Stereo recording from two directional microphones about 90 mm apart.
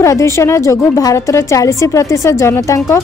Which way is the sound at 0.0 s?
35° left (ahead or behind).